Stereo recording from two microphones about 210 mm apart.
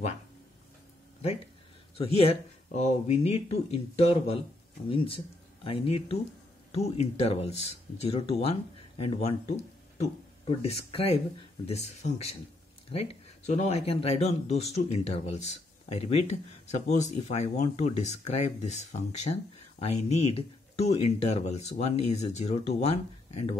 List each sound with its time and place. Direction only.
2.0 s speech: 30° left (ahead or behind)